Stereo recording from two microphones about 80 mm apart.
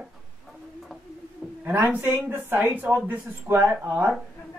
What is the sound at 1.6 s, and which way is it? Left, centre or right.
Speech, centre.